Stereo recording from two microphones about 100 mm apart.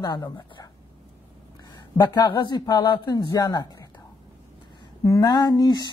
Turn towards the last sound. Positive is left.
turn(degrees=45)  # may be behind; listen again after turning